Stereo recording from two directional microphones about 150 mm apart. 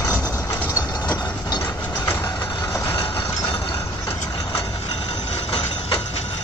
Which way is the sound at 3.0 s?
35° left (ahead or behind).